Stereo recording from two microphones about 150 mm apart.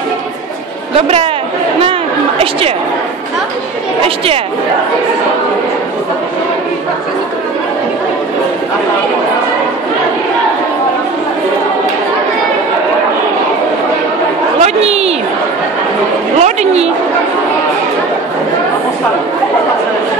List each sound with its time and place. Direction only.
0.9 s speech: 40° right (ahead or behind)
1.8 s chatter: 40° right (ahead or behind)
14.6 s a woman's voice: 45° right (ahead or behind)
16.3 s a woman's voice: 45° right (ahead or behind)